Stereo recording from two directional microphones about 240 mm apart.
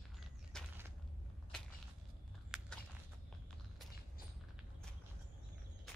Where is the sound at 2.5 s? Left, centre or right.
Centre.